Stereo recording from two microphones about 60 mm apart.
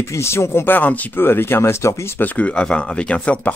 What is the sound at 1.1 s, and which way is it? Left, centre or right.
Speech, left.